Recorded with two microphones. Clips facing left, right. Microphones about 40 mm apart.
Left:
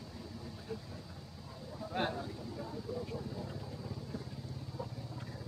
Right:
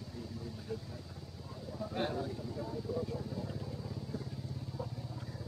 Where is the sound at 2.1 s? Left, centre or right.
Centre.